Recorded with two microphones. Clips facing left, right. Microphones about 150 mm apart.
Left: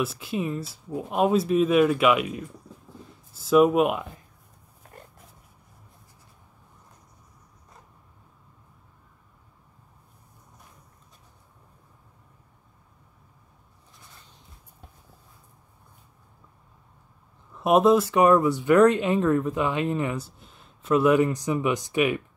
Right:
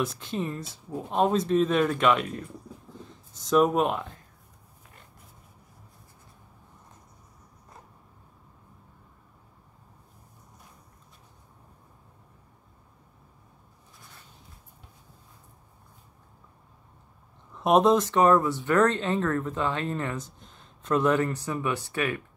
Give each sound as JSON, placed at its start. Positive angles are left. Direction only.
{"t": 0.0, "sound": "speech", "side_deg": 5}
{"t": 4.8, "sound": "dog", "side_deg": 45}
{"t": 17.6, "sound": "speech", "side_deg": 5}